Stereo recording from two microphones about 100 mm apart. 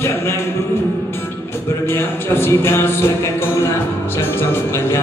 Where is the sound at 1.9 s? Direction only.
25° left (ahead or behind).